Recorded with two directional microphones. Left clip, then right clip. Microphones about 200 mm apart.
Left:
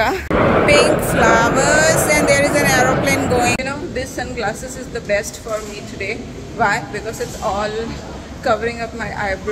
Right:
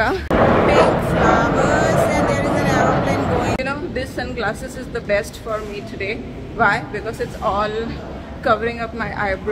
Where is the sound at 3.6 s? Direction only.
10° right (ahead or behind).